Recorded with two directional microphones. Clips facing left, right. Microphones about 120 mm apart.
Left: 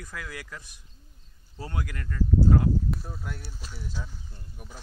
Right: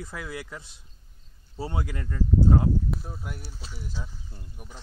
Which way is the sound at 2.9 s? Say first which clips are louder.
Even; 5° right (ahead or behind).